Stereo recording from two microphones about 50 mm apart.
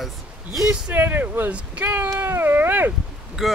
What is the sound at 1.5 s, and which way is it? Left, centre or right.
Speech, right.